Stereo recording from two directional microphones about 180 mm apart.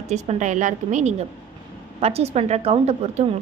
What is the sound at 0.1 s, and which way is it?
A woman's voice, 40° right (ahead or behind).